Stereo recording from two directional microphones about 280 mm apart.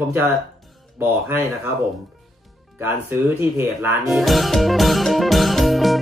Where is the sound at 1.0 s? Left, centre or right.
Centre.